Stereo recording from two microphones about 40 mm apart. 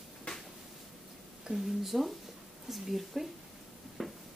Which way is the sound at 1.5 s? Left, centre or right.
Centre.